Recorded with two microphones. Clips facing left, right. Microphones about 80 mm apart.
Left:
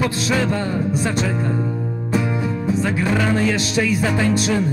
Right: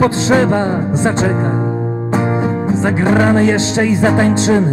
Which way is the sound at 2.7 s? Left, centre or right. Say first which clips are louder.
Right 6 dB; right.